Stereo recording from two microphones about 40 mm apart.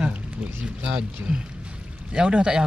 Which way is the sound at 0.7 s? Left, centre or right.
Right.